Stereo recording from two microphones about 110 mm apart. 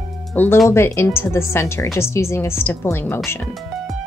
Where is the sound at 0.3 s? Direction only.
15° left (ahead or behind).